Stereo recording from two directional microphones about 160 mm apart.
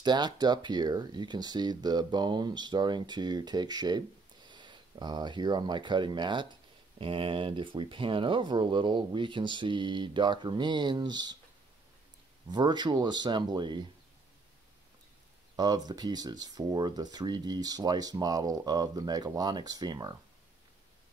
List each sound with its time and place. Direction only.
0.0 s speech: 25° right (ahead or behind)
12.4 s speech: 25° right (ahead or behind)
15.5 s speech: 25° right (ahead or behind)